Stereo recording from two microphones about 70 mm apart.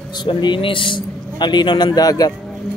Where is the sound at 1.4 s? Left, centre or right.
Left.